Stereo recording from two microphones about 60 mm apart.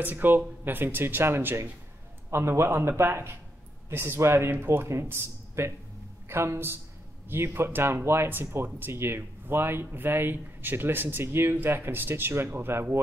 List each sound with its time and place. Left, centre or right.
0.0 s speech: right